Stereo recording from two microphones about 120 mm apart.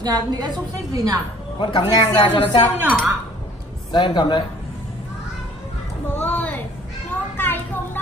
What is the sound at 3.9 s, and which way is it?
Speech, 40° left (ahead or behind).